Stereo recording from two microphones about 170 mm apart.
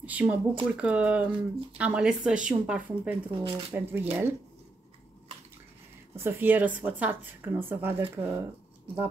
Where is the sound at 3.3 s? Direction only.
30° right (ahead or behind).